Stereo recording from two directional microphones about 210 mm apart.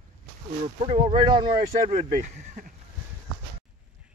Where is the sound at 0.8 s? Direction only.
25° right (ahead or behind).